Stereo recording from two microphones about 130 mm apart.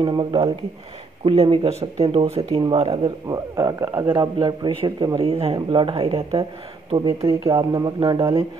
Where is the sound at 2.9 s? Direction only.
30° right (ahead or behind).